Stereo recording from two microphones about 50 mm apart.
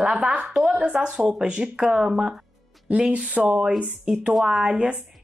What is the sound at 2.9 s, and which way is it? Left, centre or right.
Speech, right.